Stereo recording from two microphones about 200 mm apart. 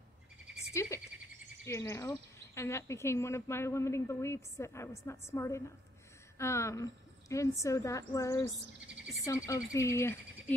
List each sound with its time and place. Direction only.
0.7 s speech: 15° left (ahead or behind)